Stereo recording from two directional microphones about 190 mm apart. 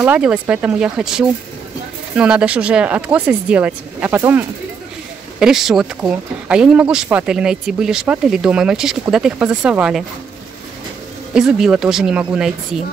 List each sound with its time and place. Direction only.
0.0 s speech: 5° right (ahead or behind)
11.3 s speech: 5° right (ahead or behind)